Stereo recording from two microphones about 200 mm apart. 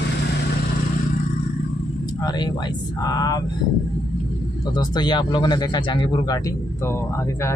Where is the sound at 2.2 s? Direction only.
20° left (ahead or behind).